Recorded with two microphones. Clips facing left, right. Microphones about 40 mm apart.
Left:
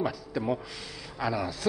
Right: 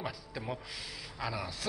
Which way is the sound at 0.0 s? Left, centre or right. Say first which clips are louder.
Left 9 dB; centre.